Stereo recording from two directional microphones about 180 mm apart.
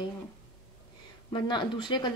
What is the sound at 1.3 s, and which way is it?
Speech, 25° left (ahead or behind).